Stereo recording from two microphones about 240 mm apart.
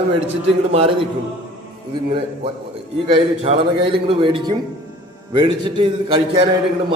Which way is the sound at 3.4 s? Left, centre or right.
Right.